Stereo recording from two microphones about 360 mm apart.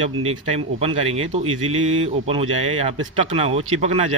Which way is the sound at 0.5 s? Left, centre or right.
Centre.